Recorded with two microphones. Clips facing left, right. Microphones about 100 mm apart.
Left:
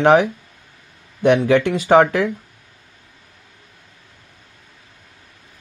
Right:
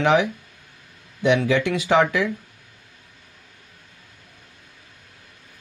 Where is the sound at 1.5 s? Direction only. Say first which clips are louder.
Left 6 dB; 50° left (ahead or behind).